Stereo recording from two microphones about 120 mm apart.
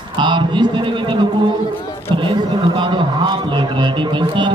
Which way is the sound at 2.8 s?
45° right (ahead or behind).